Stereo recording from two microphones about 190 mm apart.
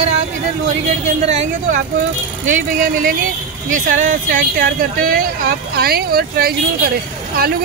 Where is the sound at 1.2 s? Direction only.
35° right (ahead or behind).